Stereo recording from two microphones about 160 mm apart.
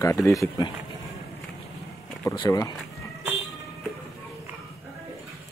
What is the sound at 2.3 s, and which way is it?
Speech, 25° left (ahead or behind).